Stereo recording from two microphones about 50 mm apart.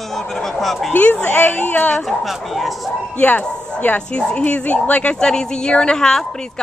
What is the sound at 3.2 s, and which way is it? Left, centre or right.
A woman's voice, left.